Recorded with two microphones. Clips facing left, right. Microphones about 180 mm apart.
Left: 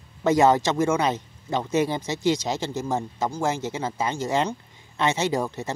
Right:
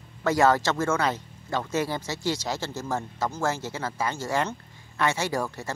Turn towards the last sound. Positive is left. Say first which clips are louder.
# left 4 dB
turn(degrees=20)  # may be behind; listen again after turning